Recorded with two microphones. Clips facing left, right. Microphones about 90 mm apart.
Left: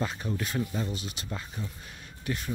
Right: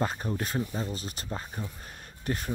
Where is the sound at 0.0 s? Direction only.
45° right (ahead or behind).